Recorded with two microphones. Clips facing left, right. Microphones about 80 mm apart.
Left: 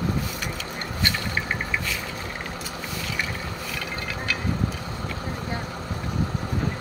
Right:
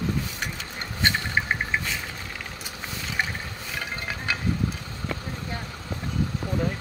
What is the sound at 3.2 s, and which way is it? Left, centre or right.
Stir, right.